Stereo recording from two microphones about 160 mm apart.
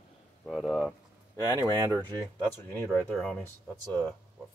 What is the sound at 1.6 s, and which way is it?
Speech, 20° right (ahead or behind).